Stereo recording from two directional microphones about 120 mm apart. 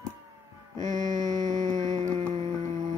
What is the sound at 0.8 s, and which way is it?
Mantra, 90° right.